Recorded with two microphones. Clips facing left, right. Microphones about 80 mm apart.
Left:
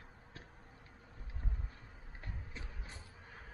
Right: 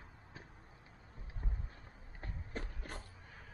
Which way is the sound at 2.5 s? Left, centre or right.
Right.